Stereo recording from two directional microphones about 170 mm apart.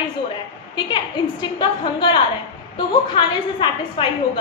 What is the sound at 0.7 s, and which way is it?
A woman's voice, 25° left (ahead or behind).